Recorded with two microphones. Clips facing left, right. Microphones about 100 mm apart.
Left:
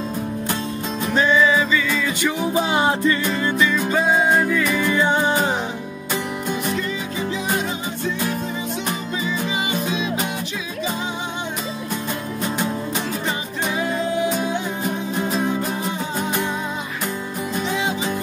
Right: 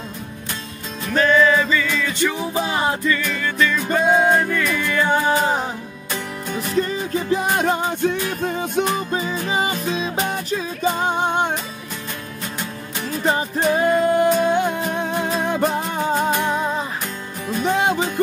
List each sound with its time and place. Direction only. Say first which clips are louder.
1.3 s music: right 2 dB; 5° left (ahead or behind)
2.9 s music: left 2 dB; 30° left (ahead or behind)
3.7 s music: right 1 dB; centre (ahead or behind)
4.7 s music: right 1 dB; 20° left (ahead or behind)
6.5 s music: right 1 dB; centre (ahead or behind)
7.2 s music: right 5 dB; 55° right (ahead or behind)
9.5 s music: right 3 dB; 40° right (ahead or behind)
10.8 s music: right 6 dB; 55° right (ahead or behind)
13.2 s music: right 6 dB; 40° right (ahead or behind); by 15.7 s 65° right (ahead or behind)
17.6 s music: right 8 dB; 55° right (ahead or behind)